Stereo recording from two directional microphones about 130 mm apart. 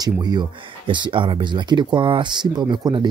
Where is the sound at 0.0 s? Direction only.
35° right (ahead or behind).